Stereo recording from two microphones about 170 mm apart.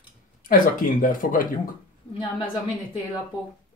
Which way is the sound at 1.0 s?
55° left (ahead or behind).